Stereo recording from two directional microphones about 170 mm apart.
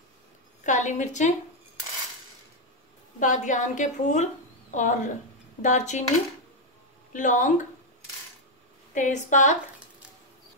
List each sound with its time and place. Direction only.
0.7 s a woman's voice: 45° left (ahead or behind)
3.2 s a woman's voice: 50° left (ahead or behind)
7.1 s a woman's voice: 50° left (ahead or behind)
8.9 s a woman's voice: 45° left (ahead or behind)